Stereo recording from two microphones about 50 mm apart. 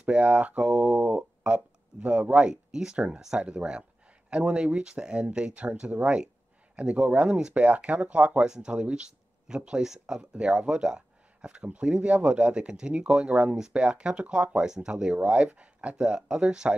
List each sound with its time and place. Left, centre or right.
0.0 s speech: right
3.3 s speech: right
7.5 s speech: right
8.5 s speech: centre